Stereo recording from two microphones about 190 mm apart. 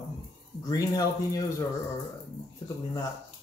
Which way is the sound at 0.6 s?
20° left (ahead or behind).